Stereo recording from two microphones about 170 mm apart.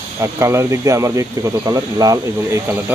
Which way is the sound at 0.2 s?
15° right (ahead or behind).